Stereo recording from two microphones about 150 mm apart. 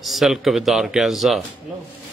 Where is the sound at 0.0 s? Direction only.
Centre (ahead or behind).